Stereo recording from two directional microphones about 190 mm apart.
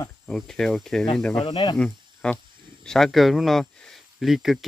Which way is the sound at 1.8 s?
5° left (ahead or behind).